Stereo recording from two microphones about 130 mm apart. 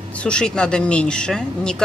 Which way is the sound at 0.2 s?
5° left (ahead or behind).